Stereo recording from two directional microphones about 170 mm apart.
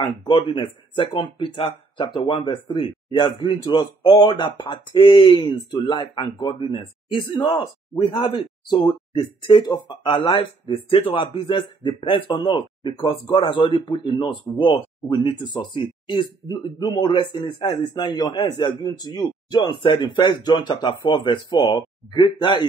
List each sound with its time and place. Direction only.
0.0 s speech: 30° left (ahead or behind)